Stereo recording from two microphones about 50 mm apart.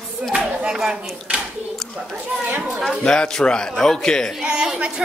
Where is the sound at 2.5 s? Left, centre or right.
Right.